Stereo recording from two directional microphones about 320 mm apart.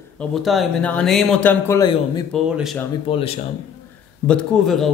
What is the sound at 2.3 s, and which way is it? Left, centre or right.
Speech, centre.